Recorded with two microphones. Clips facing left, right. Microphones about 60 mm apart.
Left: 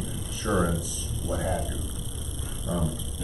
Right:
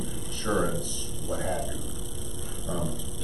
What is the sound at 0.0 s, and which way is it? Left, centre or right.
Speech, centre.